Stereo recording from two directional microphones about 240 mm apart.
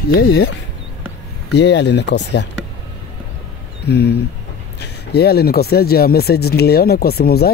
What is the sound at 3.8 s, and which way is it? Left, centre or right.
Speech, left.